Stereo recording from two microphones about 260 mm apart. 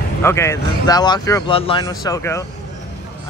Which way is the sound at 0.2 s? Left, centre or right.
Centre.